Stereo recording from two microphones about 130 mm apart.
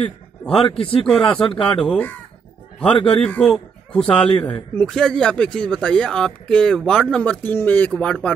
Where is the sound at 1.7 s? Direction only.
10° left (ahead or behind).